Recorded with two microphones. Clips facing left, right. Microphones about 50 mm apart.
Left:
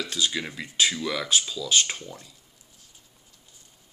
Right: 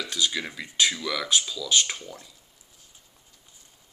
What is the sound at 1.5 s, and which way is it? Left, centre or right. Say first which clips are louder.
Speech: even; left.